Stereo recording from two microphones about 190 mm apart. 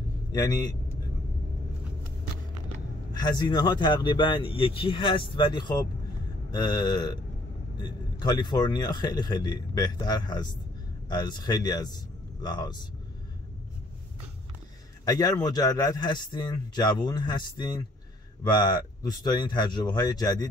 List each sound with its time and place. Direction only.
0.3 s speech: 20° left (ahead or behind)
3.2 s speech: 20° left (ahead or behind)
15.0 s speech: 20° left (ahead or behind)